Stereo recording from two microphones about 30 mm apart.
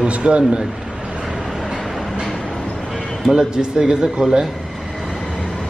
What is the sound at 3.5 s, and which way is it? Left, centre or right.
Speech, right.